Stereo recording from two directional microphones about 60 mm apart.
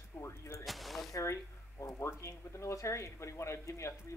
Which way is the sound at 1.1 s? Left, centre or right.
Left.